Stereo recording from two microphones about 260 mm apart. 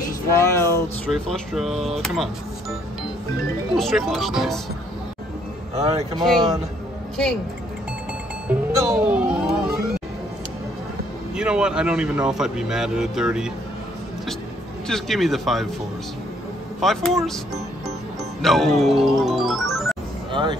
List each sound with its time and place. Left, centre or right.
0.4 s speech: centre
3.7 s speech: centre
5.8 s speech: right
8.5 s music: centre
11.3 s speech: centre
14.9 s speech: centre
16.8 s speech: centre
18.4 s music: centre
20.2 s music: centre